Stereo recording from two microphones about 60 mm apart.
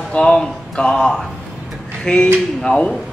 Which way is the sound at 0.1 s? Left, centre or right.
Centre.